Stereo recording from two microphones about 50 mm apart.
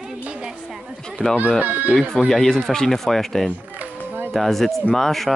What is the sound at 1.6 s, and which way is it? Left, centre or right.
Speech, right.